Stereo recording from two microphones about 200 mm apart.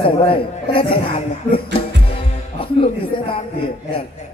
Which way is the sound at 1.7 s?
30° left (ahead or behind).